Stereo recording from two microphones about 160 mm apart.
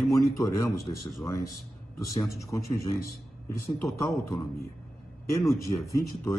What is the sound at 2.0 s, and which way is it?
Speech, 20° left (ahead or behind).